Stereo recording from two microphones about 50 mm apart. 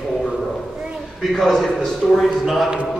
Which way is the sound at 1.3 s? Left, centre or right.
Centre.